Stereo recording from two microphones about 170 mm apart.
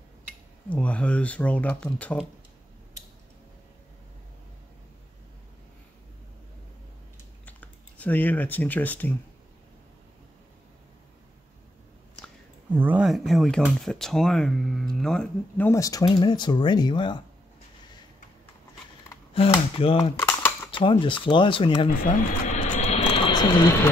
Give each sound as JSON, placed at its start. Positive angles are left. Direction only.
{"t": 0.7, "sound": "speech", "side_deg": 10}
{"t": 7.4, "sound": "speech", "side_deg": 10}
{"t": 12.7, "sound": "speech", "side_deg": -10}
{"t": 19.3, "sound": "speech", "side_deg": 35}
{"t": 20.2, "sound": "typing", "side_deg": 15}
{"t": 20.7, "sound": "speech", "side_deg": 30}
{"t": 22.0, "sound": "a sound", "side_deg": 50}